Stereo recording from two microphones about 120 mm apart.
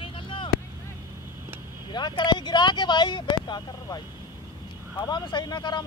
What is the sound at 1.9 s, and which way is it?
Speech, 40° left (ahead or behind).